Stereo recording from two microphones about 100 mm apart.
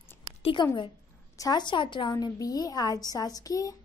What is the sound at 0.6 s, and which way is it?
A woman's voice, 50° left (ahead or behind).